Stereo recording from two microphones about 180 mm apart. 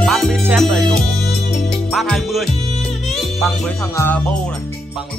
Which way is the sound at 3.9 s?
10° left (ahead or behind).